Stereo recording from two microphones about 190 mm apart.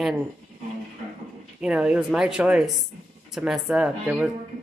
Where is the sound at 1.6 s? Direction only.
5° right (ahead or behind).